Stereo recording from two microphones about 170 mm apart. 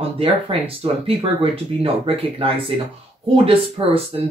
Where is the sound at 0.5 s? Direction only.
35° right (ahead or behind).